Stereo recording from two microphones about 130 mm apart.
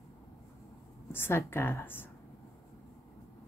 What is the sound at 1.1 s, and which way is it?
Speech, 15° left (ahead or behind).